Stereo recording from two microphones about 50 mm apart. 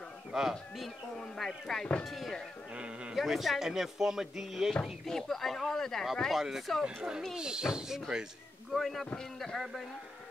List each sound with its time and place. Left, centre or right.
0.3 s speech: centre
0.8 s speech: centre
2.7 s speech: centre
3.2 s speech: centre
5.0 s speech: centre
6.3 s speech: centre
8.7 s speech: centre